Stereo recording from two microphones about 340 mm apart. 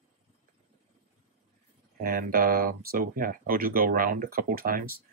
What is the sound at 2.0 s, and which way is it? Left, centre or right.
Speech, right.